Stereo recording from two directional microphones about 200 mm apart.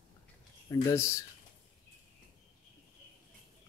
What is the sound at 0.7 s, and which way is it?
Speech, 15° left (ahead or behind).